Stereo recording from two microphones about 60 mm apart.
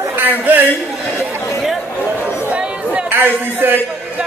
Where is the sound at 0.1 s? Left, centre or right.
Right.